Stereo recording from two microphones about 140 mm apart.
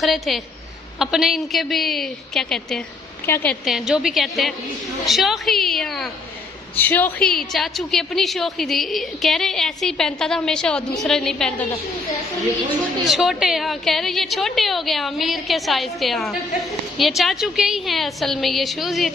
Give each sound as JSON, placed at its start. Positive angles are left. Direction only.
{"t": 0.0, "sound": "a woman's voice", "side_deg": 0}
{"t": 3.3, "sound": "a woman's voice", "side_deg": 20}
{"t": 3.6, "sound": "a woman's voice", "side_deg": -5}
{"t": 6.7, "sound": "a woman's voice", "side_deg": 15}
{"t": 7.3, "sound": "a woman's voice", "side_deg": 0}
{"t": 13.0, "sound": "a woman's voice", "side_deg": 0}